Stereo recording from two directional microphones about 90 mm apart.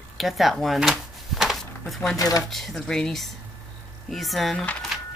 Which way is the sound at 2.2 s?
45° left (ahead or behind).